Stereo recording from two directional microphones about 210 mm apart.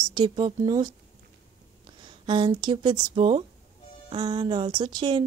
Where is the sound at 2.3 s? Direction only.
20° right (ahead or behind).